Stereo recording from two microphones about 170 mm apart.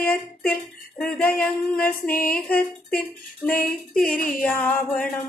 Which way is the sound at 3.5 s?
55° left (ahead or behind).